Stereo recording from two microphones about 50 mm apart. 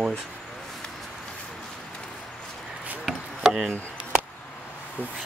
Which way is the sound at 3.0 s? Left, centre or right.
Centre.